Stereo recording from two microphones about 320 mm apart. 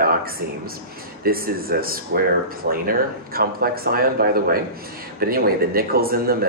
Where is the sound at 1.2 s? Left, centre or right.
Right.